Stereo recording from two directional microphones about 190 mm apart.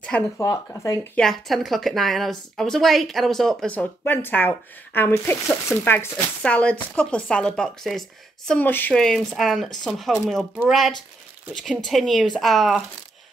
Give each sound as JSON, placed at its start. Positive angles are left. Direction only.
{"t": 0.4, "sound": "speech", "side_deg": 15}
{"t": 1.1, "sound": "speech", "side_deg": 0}